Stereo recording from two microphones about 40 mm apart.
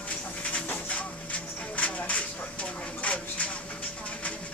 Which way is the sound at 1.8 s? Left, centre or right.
Left.